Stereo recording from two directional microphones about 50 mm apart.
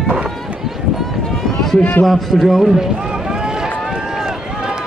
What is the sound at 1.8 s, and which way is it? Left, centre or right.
Speech, left.